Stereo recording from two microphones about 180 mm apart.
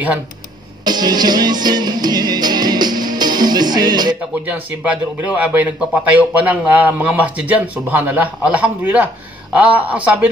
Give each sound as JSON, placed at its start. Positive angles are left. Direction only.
{"t": 0.8, "sound": "music", "side_deg": -25}
{"t": 4.5, "sound": "speech", "side_deg": -10}